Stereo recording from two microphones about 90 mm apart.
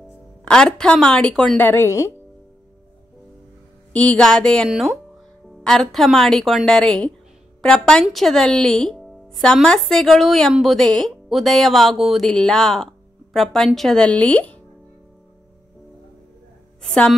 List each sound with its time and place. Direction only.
0.5 s a woman's voice: 10° left (ahead or behind)
1.6 s a woman's voice: 20° left (ahead or behind)
1.9 s speech: 30° left (ahead or behind)
3.9 s a woman's voice: 15° left (ahead or behind)